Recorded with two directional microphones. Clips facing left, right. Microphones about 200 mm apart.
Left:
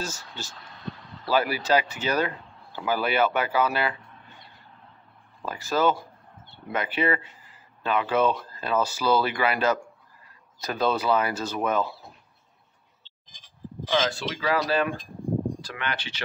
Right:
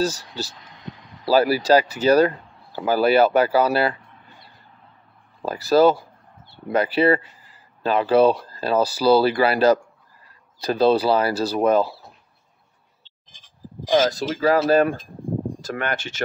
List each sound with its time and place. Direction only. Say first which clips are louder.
0.6 s vehicle: left 1 dB; 15° right (ahead or behind)
1.3 s speech: right 7 dB; 35° right (ahead or behind)
5.4 s speech: right 9 dB; 35° right (ahead or behind)
14.0 s speech: right 7 dB; 40° right (ahead or behind)